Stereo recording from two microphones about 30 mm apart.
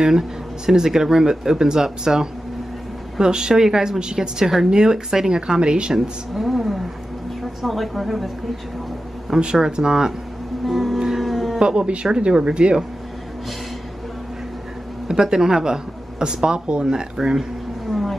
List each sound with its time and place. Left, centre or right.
0.7 s speech: centre
4.9 s speech: centre
5.6 s speech: right
6.3 s a sound: centre
7.6 s a woman's voice: centre
9.6 s speech: right
10.6 s music: centre
11.1 s a sound: centre
11.6 s speech: right
15.0 s speech: right
16.8 s speech: right
17.8 s a sound: centre